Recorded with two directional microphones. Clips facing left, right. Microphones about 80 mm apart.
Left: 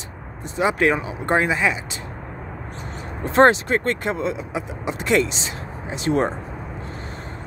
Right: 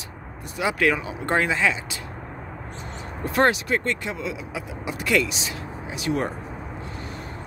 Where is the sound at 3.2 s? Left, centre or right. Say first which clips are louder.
Left 6 dB; left.